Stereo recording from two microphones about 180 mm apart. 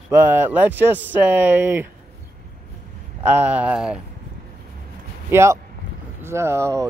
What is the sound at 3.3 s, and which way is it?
Speech, 10° right (ahead or behind).